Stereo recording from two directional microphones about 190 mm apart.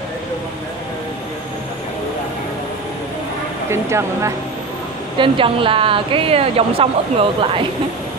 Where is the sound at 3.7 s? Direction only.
15° right (ahead or behind).